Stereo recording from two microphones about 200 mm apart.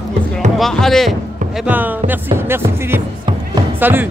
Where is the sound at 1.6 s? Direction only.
10° right (ahead or behind).